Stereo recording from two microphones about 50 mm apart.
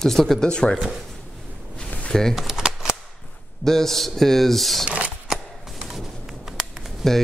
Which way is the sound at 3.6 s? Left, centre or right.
Centre.